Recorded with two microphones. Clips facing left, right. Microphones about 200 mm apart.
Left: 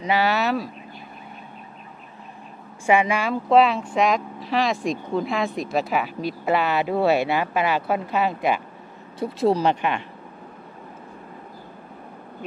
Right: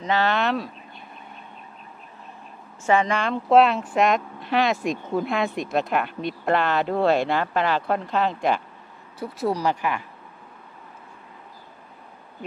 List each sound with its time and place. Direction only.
0.0 s speech: 10° left (ahead or behind)
2.9 s speech: 10° left (ahead or behind)
9.2 s speech: 25° left (ahead or behind)